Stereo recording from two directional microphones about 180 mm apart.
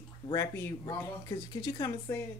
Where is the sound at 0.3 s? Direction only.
20° left (ahead or behind).